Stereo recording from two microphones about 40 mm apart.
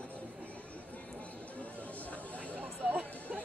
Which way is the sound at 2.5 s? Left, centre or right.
Right.